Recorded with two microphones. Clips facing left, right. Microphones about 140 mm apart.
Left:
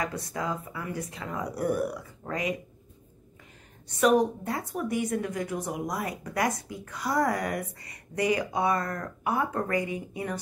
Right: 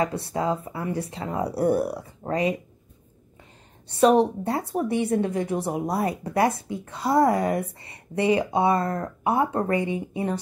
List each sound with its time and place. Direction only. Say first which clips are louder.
0.0 s speech: right 7 dB; 30° right (ahead or behind)
3.9 s a woman's voice: right 4 dB; 30° right (ahead or behind)